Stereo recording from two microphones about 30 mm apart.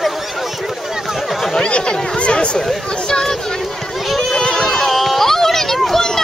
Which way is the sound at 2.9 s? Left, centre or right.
Left.